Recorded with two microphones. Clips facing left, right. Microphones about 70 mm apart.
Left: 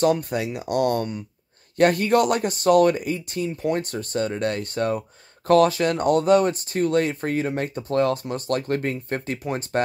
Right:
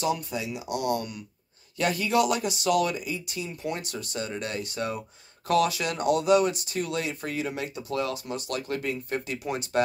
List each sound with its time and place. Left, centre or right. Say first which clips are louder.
0.0 s speech: left 7 dB; left